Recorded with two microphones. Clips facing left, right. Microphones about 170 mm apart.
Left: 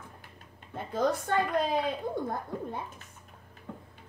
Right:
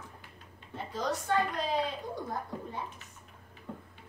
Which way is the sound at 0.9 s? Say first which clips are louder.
Left 3 dB; 55° left (ahead or behind).